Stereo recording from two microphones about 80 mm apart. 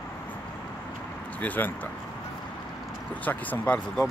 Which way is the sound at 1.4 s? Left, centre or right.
Left.